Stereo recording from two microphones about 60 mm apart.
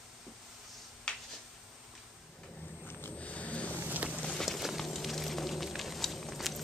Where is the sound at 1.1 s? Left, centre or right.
Centre.